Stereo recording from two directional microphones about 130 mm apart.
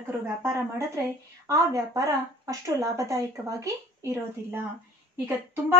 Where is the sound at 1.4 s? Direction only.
25° right (ahead or behind).